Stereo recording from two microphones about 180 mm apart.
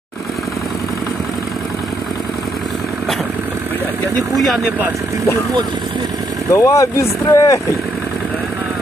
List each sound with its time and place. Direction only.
4.4 s speech: centre (ahead or behind)
6.5 s speech: 15° left (ahead or behind)